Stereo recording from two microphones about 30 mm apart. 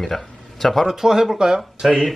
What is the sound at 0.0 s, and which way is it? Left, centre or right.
Speech, centre.